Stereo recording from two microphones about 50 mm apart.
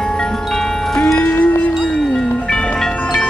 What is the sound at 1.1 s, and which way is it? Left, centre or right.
Music, left.